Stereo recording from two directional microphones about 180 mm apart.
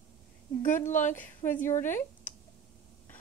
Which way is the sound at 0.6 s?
45° left (ahead or behind).